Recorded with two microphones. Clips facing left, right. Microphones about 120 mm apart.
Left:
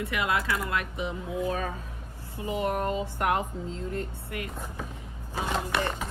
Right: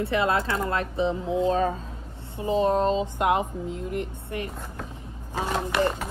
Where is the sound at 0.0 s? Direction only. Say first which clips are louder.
Right 5 dB; 30° right (ahead or behind).